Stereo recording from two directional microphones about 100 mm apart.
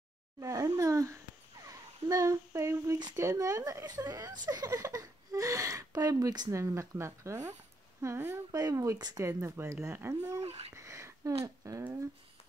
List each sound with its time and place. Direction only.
0.4 s speech: 35° right (ahead or behind)
6.5 s speech: 30° right (ahead or behind)
9.4 s speech: 25° right (ahead or behind)
10.4 s a sound: 90° right
10.7 s a sound: 30° right (ahead or behind)
11.4 s speech: 35° right (ahead or behind)